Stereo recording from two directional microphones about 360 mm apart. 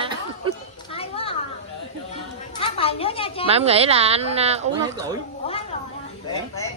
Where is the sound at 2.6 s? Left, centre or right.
Centre.